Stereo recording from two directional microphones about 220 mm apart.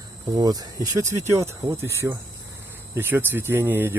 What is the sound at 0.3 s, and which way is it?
Speech, 15° right (ahead or behind).